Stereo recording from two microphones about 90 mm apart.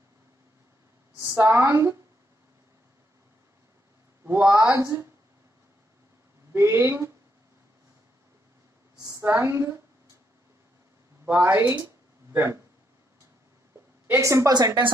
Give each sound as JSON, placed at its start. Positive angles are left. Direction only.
{"t": 1.2, "sound": "a woman's voice", "side_deg": -35}
{"t": 4.2, "sound": "speech", "side_deg": -20}
{"t": 4.6, "sound": "a woman's voice", "side_deg": -35}
{"t": 6.5, "sound": "a woman's voice", "side_deg": -30}
{"t": 8.9, "sound": "a sound", "side_deg": -45}
{"t": 9.2, "sound": "a woman's voice", "side_deg": -30}
{"t": 11.2, "sound": "a sound", "side_deg": -25}
{"t": 14.0, "sound": "a woman's voice", "side_deg": -30}
{"t": 14.5, "sound": "a woman's voice", "side_deg": -55}